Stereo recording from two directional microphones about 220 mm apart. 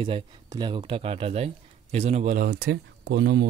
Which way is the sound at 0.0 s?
20° right (ahead or behind).